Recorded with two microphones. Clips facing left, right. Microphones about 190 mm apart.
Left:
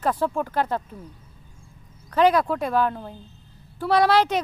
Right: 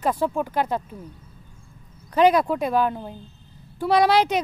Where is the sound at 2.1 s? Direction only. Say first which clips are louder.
Right 1 dB; 15° right (ahead or behind).